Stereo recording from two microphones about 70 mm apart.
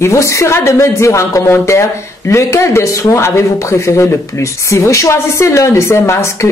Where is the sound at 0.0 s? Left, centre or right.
Left.